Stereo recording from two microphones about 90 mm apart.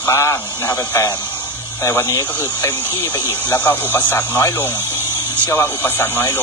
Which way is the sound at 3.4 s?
20° left (ahead or behind).